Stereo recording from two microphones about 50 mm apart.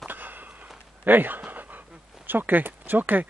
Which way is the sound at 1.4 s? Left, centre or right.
Right.